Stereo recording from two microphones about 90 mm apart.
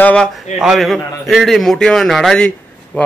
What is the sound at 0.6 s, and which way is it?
A man's voice, centre (ahead or behind).